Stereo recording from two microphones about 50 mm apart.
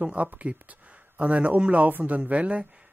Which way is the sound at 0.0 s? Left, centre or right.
Right.